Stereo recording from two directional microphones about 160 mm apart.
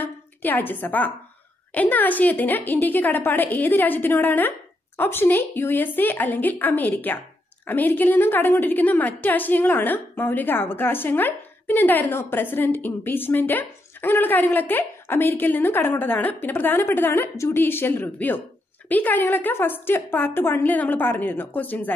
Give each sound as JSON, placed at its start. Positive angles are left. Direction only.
{"t": 0.0, "sound": "a woman's voice", "side_deg": 10}